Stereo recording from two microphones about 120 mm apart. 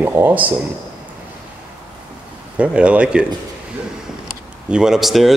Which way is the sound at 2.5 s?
10° right (ahead or behind).